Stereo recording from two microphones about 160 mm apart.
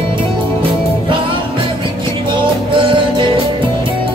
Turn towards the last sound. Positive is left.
turn(degrees=-30)  # may be behind; listen again after turning